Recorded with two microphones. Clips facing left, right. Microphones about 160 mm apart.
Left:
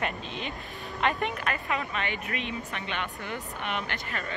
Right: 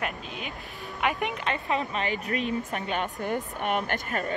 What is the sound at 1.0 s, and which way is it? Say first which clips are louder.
A woman's voice: even; 15° right (ahead or behind).